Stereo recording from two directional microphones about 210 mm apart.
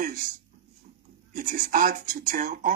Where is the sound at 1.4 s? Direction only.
40° right (ahead or behind).